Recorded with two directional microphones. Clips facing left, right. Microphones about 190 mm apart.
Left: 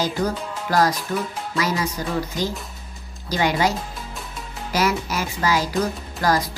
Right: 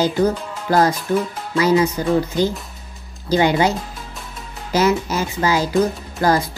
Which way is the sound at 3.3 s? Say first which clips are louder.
Right 5 dB; 25° right (ahead or behind).